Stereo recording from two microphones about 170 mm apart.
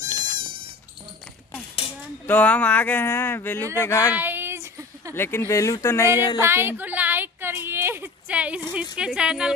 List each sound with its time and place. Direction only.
0.0 s insect: 25° right (ahead or behind)
2.2 s speech: 10° left (ahead or behind)
4.1 s a sound: 10° right (ahead or behind)
5.1 s speech: 15° left (ahead or behind)
6.4 s a sound: 15° right (ahead or behind)
8.9 s speech: 5° right (ahead or behind)